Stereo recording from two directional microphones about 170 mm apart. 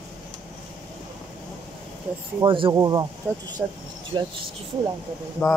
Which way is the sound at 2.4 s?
30° right (ahead or behind).